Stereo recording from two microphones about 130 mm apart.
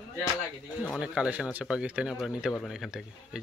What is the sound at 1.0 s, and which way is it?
Speech, 5° right (ahead or behind).